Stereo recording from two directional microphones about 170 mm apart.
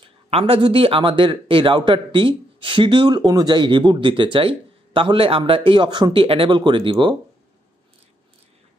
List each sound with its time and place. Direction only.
0.3 s speech: 35° right (ahead or behind)